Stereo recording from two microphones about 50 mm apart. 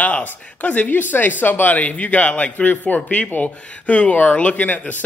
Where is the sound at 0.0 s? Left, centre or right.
Left.